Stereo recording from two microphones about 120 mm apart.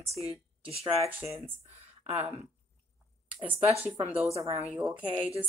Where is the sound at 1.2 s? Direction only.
20° right (ahead or behind).